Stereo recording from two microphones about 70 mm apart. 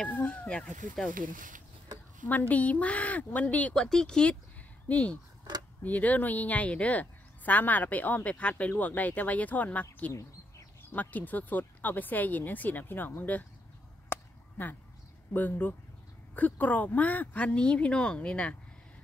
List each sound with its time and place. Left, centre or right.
0.0 s speech: left
2.2 s speech: left
14.0 s chop: left
15.3 s speech: left